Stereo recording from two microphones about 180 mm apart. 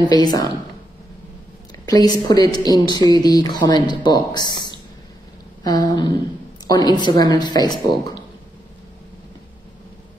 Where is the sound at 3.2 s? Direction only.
20° left (ahead or behind).